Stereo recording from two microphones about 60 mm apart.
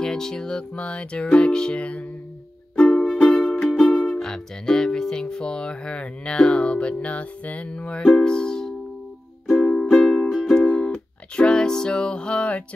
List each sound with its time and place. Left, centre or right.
0.0 s music: centre
3.9 s music: left
4.2 s music: centre
10.5 s music: left